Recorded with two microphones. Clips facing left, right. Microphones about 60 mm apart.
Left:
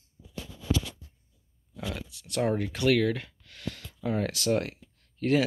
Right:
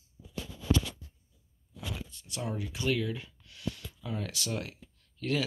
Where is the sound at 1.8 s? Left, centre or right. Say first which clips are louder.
Left 5 dB; left.